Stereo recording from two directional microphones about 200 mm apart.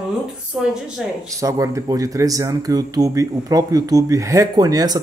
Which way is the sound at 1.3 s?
15° right (ahead or behind).